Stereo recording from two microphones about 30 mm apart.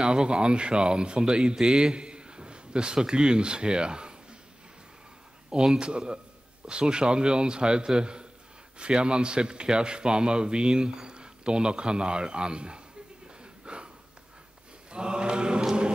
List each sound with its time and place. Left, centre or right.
0.0 s a man's voice: right
5.8 s a man's voice: right
13.7 s a sound: right
14.9 s mantra: right